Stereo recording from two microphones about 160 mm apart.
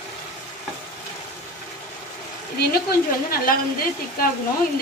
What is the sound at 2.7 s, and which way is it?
Speech, 70° left (ahead or behind).